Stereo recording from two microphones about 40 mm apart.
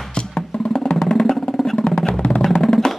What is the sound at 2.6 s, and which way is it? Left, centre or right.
Music, centre.